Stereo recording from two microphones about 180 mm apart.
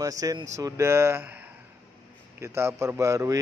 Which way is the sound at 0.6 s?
15° right (ahead or behind).